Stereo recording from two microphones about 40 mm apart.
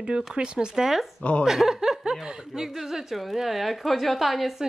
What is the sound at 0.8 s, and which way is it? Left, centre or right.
A woman's voice, centre.